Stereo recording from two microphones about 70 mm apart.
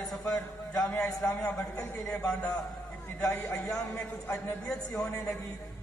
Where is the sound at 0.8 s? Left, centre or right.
Centre; by 4.6 s left.